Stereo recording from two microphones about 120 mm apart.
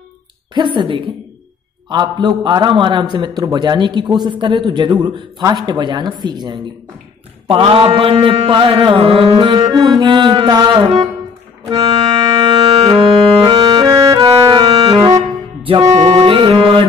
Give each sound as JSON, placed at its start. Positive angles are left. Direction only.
{"t": 0.6, "sound": "mantra", "side_deg": -45}
{"t": 1.9, "sound": "a man's voice", "side_deg": -40}
{"t": 7.4, "sound": "mantra", "side_deg": -45}
{"t": 12.8, "sound": "music", "side_deg": -40}
{"t": 15.8, "sound": "music", "side_deg": -65}
{"t": 16.3, "sound": "music", "side_deg": -45}